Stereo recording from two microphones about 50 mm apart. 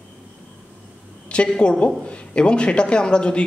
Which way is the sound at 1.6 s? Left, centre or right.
Centre.